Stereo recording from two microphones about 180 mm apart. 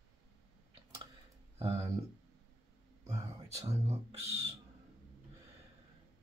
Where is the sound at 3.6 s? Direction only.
35° right (ahead or behind).